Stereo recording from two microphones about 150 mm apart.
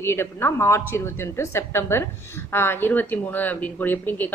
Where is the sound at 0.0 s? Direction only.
15° left (ahead or behind).